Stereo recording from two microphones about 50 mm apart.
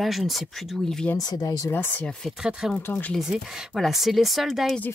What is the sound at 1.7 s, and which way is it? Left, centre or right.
Speech, left.